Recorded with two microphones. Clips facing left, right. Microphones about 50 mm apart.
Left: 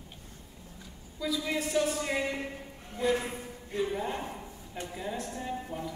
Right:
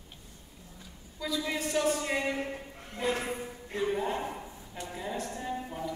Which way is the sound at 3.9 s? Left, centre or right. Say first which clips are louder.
Right 2 dB; centre.